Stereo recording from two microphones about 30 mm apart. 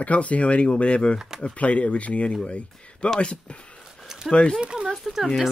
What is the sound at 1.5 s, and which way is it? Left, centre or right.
Speech, left.